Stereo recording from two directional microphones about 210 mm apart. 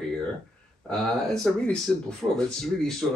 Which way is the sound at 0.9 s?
Centre (ahead or behind).